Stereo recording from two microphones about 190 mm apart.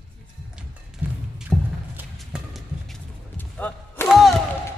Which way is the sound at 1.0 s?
10° right (ahead or behind).